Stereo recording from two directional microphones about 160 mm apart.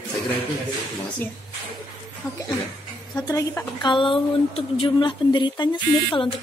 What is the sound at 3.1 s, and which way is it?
A woman's voice, 20° left (ahead or behind).